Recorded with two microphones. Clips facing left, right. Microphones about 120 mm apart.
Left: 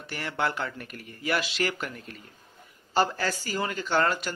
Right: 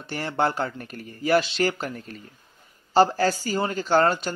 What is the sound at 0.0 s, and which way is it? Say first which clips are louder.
Speech: right 5 dB; 30° right (ahead or behind).